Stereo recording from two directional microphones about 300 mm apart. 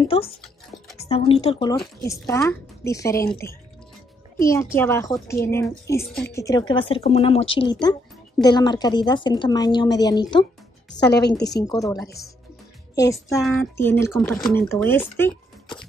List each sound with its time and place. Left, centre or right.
0.0 s speech: centre
11.2 s a woman's voice: left
11.5 s speech: centre